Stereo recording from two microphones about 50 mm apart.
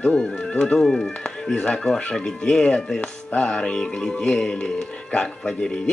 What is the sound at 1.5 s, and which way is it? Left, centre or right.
Speech, left.